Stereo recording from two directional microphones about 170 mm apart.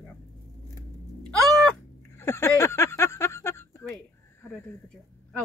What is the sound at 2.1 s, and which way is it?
Speech, 15° left (ahead or behind).